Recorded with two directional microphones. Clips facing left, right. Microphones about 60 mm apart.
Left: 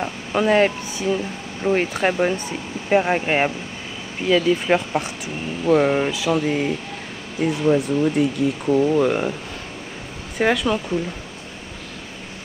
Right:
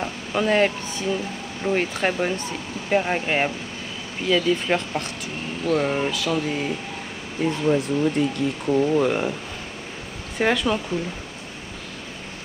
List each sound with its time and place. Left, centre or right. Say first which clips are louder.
0.0 s speech: left 3 dB; centre
10.3 s speech: left 2 dB; centre